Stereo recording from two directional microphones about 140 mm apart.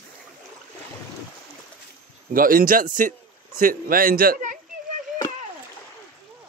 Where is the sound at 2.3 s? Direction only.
90° right.